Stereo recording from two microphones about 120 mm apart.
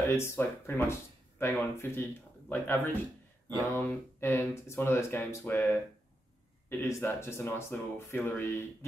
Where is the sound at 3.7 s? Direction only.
20° left (ahead or behind).